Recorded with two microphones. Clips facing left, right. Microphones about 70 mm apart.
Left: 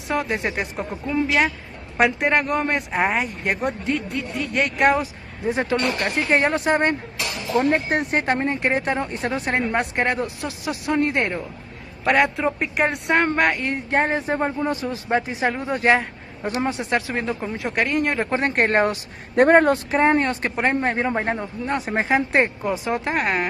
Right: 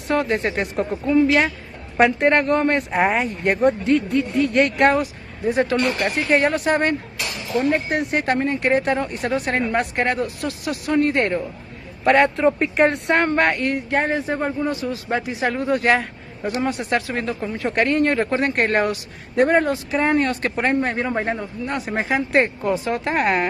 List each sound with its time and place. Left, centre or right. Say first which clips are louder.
0.1 s speech: right 3 dB; centre
4.9 s speech: right 2 dB; left
7.7 s speech: even; left; by 11.4 s centre
12.0 s speech: right 3 dB; centre
13.6 s speech: right 1 dB; left
17.7 s speech: right 3 dB; centre
18.3 s speech: even; left
19.3 s speech: left 3 dB; left
20.0 s speech: right 2 dB; left
23.1 s speech: right 5 dB; centre